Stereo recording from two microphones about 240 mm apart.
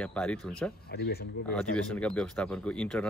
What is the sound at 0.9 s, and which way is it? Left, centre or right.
Speech, left.